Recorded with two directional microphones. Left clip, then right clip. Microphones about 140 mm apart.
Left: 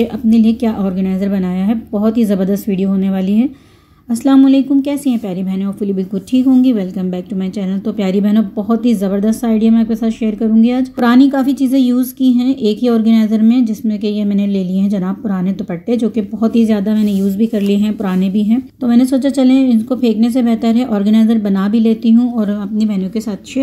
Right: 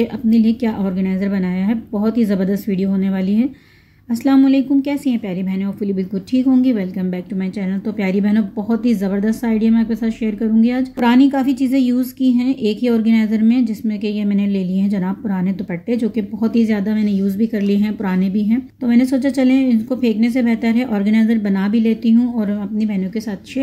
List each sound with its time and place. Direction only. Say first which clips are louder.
0.0 s a woman's voice: left 3 dB; 20° left (ahead or behind)
22.8 s a woman's voice: left 5 dB; 25° left (ahead or behind)